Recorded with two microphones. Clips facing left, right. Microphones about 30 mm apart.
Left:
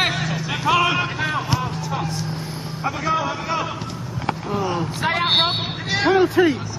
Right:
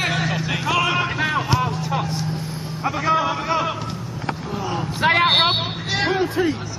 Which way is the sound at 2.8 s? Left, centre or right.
Centre.